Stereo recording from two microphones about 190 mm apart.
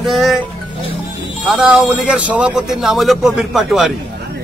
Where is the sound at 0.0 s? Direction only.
Centre (ahead or behind).